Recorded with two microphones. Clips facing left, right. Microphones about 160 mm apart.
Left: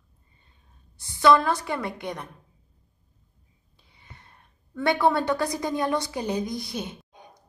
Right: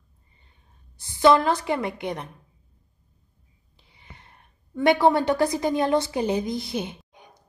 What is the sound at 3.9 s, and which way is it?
A woman's voice, 20° right (ahead or behind).